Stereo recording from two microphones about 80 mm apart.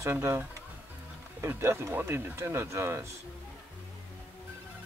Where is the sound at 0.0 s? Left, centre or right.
Right.